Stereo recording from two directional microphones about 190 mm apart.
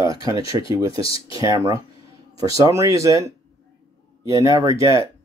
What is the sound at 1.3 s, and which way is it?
Speech, 20° right (ahead or behind).